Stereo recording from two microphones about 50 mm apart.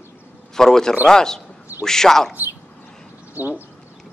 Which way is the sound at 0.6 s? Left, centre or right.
Centre.